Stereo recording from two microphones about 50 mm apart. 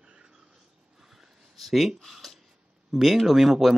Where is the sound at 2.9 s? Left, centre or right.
Centre.